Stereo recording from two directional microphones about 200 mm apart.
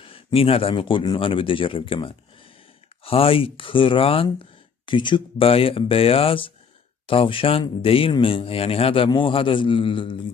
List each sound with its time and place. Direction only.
0.0 s speech: 30° left (ahead or behind)